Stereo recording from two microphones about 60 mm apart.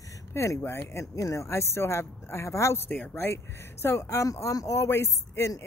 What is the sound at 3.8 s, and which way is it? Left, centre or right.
Speech, left.